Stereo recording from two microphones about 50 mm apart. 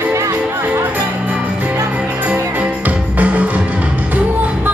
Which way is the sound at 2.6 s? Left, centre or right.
Right.